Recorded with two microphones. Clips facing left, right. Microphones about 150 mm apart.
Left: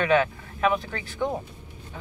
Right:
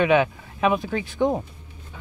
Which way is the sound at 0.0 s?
20° right (ahead or behind).